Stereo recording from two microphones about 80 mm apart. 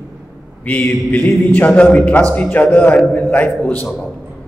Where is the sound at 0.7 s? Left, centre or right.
Left.